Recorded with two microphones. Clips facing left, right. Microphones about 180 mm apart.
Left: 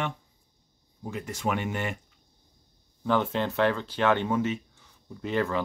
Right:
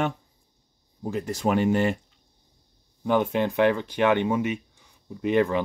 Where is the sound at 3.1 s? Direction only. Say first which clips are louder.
Right 3 dB; 15° right (ahead or behind).